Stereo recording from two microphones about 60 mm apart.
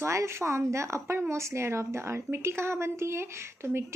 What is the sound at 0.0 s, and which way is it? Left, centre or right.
A woman's voice, right.